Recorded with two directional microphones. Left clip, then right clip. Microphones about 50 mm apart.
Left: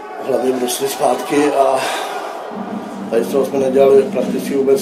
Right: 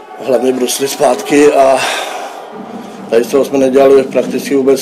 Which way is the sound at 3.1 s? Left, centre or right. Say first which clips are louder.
Right 6 dB; right.